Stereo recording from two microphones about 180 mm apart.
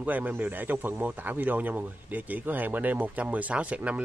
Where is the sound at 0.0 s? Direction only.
10° right (ahead or behind).